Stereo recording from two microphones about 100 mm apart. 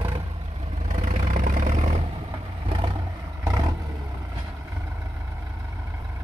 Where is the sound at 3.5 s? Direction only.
35° right (ahead or behind).